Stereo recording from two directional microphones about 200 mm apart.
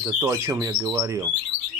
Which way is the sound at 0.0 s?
15° right (ahead or behind).